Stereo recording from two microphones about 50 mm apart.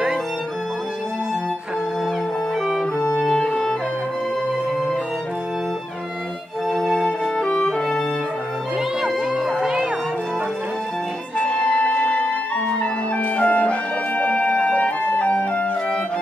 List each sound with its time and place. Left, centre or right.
2.6 s music: centre
6.7 s music: centre
7.1 s music: left
9.6 s music: centre
11.3 s music: left